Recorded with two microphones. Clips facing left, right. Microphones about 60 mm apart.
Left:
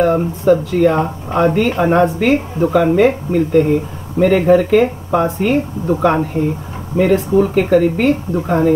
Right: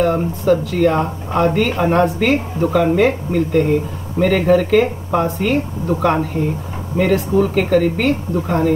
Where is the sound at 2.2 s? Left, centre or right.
Centre.